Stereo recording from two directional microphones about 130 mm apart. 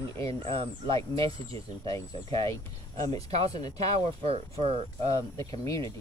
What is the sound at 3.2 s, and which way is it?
Speech, 50° right (ahead or behind).